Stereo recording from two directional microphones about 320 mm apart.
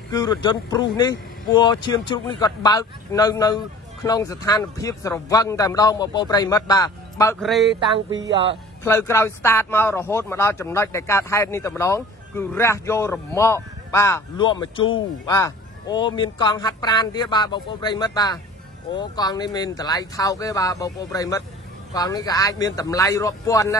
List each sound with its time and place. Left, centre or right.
0.1 s speech: centre
8.1 s speech: right
8.8 s speech: centre